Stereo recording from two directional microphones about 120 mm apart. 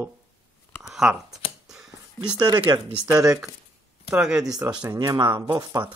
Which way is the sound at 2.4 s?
40° right (ahead or behind).